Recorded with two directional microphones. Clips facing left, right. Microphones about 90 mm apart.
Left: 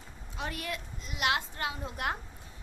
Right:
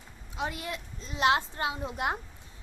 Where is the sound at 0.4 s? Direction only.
25° right (ahead or behind).